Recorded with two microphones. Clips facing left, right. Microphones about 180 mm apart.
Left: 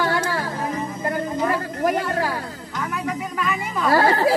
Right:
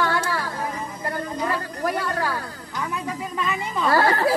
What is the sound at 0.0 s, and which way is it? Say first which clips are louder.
Music: left 2 dB; 25° left (ahead or behind).